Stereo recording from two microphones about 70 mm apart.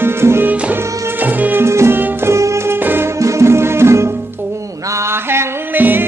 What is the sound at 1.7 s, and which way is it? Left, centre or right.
Music, right.